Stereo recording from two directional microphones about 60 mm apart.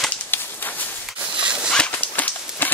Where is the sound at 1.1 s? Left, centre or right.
Right.